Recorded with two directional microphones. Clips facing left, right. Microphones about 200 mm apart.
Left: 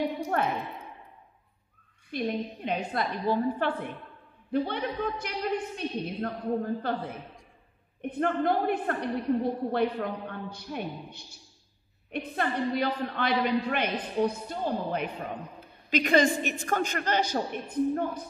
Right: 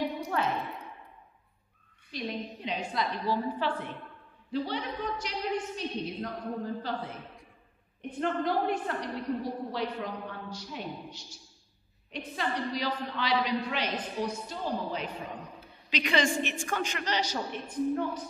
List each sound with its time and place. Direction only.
0.0 s a sound: 55° left (ahead or behind)
2.1 s a woman's voice: 55° left (ahead or behind)
15.9 s a woman's voice: 45° left (ahead or behind)